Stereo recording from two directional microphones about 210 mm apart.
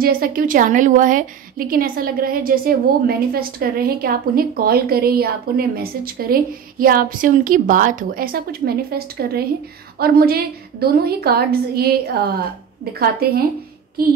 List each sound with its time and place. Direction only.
0.0 s a woman's voice: 45° right (ahead or behind)